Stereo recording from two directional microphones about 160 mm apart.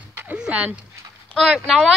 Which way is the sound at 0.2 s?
10° right (ahead or behind).